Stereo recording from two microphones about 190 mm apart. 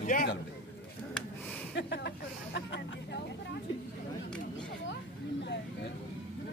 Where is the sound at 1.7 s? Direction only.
65° left (ahead or behind).